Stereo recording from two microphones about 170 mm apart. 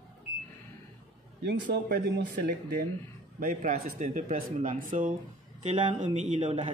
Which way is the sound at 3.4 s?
50° right (ahead or behind).